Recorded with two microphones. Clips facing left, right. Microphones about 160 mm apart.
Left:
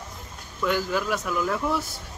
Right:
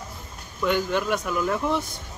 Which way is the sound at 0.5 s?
Centre (ahead or behind).